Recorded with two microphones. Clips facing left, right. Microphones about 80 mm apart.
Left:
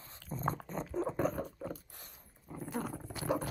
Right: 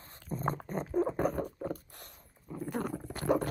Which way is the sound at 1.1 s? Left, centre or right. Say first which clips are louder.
Right 3 dB; right.